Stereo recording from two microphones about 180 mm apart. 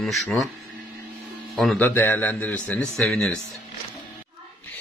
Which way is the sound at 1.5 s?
Centre (ahead or behind).